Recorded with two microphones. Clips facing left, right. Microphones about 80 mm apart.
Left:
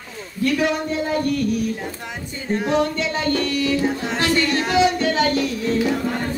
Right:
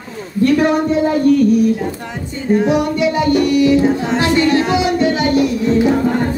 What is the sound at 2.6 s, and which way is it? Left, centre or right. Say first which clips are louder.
Music: right 6 dB; centre.